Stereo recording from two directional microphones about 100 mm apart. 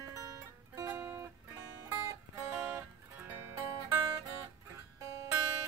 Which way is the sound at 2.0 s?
35° right (ahead or behind).